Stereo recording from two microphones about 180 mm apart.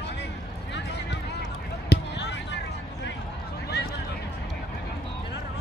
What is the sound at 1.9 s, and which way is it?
Basketball bounce, 75° left (ahead or behind).